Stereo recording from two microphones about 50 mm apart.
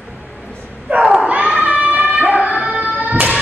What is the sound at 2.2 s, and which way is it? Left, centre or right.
Music, right.